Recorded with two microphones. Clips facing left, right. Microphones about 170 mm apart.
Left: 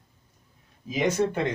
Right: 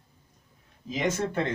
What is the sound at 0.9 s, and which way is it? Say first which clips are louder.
Speech: left 4 dB; 10° left (ahead or behind).